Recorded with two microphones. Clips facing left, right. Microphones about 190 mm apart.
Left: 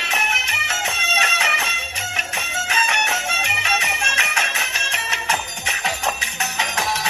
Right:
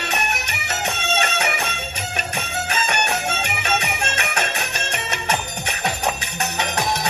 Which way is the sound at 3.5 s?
55° right (ahead or behind).